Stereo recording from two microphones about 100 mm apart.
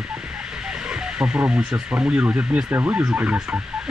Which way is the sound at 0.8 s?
10° right (ahead or behind).